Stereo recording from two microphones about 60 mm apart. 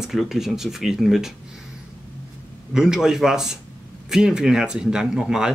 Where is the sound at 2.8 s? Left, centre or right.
Centre.